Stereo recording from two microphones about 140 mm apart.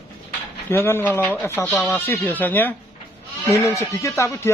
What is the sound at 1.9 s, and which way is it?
Speech, 15° left (ahead or behind).